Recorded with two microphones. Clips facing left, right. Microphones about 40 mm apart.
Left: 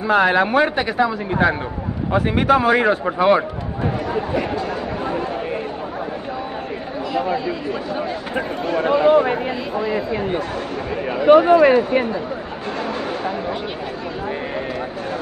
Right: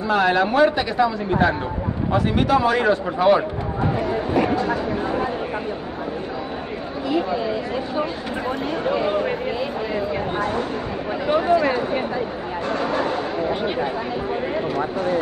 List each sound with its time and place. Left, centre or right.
0.1 s speech: left
8.8 s speech: left
11.2 s speech: left